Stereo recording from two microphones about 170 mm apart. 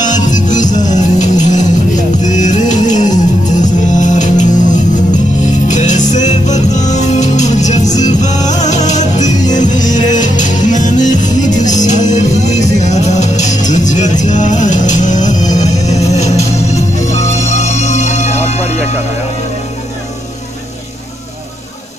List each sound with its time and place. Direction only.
0.0 s music: 45° left (ahead or behind)